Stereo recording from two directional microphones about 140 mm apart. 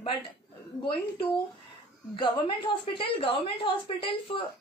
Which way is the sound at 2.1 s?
35° left (ahead or behind).